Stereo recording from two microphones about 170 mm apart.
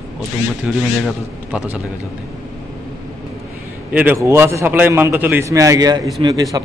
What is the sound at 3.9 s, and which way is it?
A man's voice, 10° right (ahead or behind).